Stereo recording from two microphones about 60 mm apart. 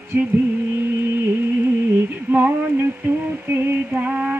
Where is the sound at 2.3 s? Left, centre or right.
Right.